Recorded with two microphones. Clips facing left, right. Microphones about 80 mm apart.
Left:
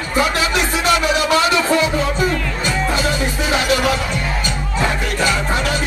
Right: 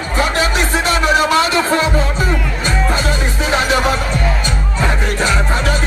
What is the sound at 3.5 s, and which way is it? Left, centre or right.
Speech, right.